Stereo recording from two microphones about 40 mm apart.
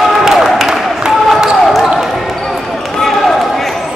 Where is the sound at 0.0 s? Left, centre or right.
Centre.